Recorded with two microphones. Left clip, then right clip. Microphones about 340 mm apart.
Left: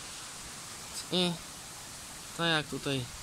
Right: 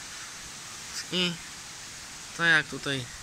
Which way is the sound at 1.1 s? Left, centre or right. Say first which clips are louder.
Right 2 dB; centre.